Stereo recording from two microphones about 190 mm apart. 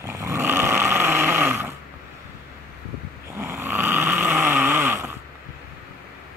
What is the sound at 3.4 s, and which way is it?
Snoring, 10° right (ahead or behind).